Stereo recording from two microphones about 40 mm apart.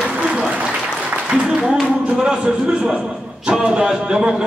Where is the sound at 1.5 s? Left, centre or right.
Centre.